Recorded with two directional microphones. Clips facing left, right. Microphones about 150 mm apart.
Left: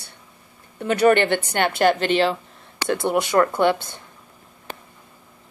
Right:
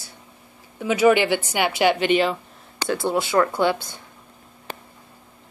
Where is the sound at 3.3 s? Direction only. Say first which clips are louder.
Left 2 dB; 10° right (ahead or behind).